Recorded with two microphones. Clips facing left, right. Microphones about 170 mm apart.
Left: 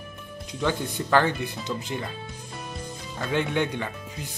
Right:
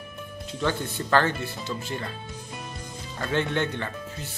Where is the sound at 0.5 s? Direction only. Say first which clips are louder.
Left 1 dB; 15° left (ahead or behind).